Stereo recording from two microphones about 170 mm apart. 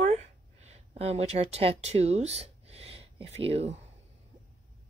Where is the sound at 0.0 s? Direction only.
40° right (ahead or behind).